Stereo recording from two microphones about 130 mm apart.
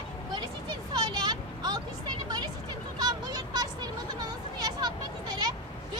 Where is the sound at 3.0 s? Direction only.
30° right (ahead or behind).